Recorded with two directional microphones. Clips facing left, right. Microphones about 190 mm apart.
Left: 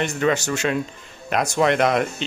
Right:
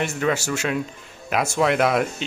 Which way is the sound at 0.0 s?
5° right (ahead or behind).